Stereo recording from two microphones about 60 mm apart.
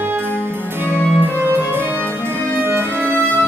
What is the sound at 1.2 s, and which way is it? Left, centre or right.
Music, right.